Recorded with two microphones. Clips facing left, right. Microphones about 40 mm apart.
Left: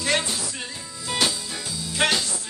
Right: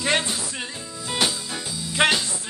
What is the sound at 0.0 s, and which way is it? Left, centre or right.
Music, right.